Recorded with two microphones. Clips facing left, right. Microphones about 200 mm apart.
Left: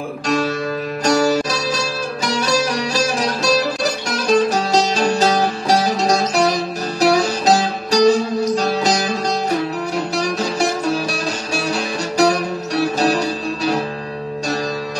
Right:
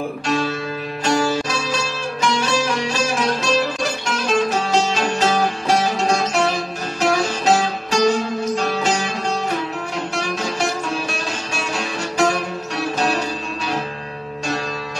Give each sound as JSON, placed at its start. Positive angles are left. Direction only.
{"t": 1.0, "sound": "music", "side_deg": 40}
{"t": 10.1, "sound": "music", "side_deg": 35}